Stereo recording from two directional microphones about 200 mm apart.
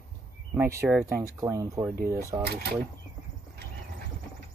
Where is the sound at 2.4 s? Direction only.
55° right (ahead or behind).